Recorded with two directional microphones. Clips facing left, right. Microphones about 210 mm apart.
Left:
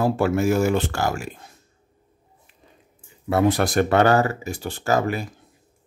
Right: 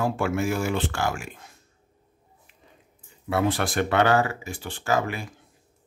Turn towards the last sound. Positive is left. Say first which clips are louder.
# left 4 dB
turn(degrees=40)  # may be behind; listen again after turning